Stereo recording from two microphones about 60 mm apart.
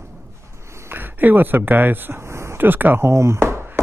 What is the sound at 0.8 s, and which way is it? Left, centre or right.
Speech, right.